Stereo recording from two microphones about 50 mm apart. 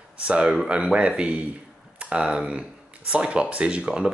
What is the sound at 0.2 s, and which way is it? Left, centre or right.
Speech, right.